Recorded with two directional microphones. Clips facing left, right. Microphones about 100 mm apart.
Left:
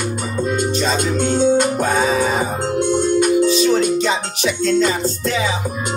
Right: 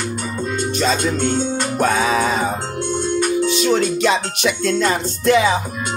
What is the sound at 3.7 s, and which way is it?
Music, 75° right (ahead or behind).